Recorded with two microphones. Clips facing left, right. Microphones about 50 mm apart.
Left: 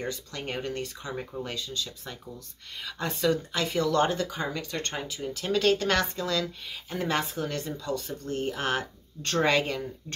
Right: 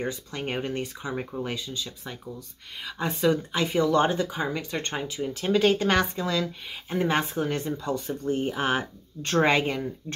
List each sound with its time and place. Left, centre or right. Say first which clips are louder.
0.0 s speech: right 3 dB; right